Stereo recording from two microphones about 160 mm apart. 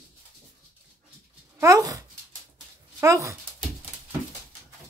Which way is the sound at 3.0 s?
20° right (ahead or behind).